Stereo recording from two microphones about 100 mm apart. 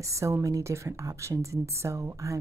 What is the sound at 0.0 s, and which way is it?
A woman's voice, 30° right (ahead or behind).